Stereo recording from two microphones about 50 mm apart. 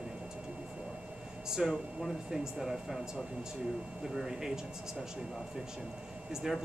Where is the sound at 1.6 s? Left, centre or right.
Centre.